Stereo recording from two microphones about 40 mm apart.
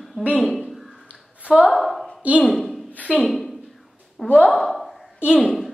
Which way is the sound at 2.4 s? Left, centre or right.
Centre.